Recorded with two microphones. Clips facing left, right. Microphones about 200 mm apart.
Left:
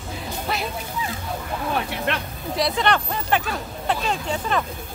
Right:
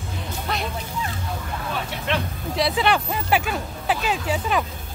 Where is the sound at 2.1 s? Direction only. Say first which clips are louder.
Right 3 dB; 60° left (ahead or behind).